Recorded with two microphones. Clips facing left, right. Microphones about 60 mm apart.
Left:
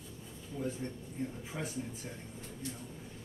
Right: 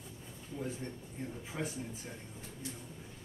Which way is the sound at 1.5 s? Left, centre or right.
Centre.